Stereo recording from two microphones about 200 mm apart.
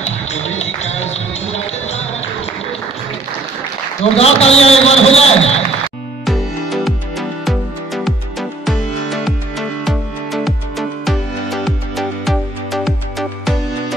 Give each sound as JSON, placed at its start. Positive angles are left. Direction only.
{"t": 0.3, "sound": "music", "side_deg": 35}
{"t": 4.0, "sound": "a man's voice", "side_deg": 30}
{"t": 6.2, "sound": "music", "side_deg": 0}